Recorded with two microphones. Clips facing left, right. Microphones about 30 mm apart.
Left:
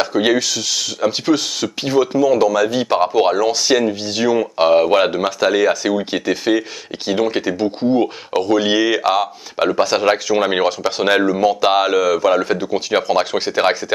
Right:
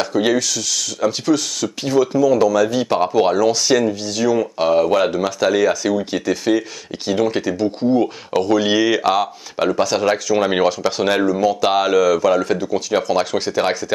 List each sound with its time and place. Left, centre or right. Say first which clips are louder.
0.0 s speech: left 1 dB; centre
8.4 s speech: even; centre